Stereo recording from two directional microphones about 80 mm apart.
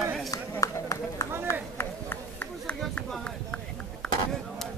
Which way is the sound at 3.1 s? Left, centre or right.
Centre.